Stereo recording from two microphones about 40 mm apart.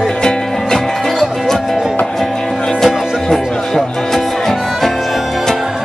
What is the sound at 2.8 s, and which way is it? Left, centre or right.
Music, centre.